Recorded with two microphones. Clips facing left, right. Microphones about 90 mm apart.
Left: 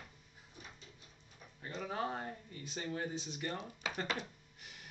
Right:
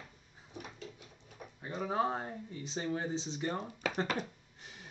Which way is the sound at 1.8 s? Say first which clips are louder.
Right 6 dB; 25° right (ahead or behind).